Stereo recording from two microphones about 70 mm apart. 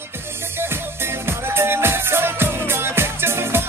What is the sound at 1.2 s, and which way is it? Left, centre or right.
Music, right.